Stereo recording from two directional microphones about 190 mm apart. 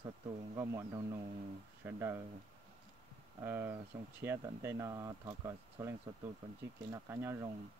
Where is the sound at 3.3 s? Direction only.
15° right (ahead or behind).